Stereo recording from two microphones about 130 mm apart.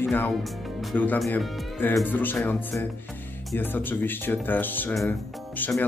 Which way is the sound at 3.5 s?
15° left (ahead or behind).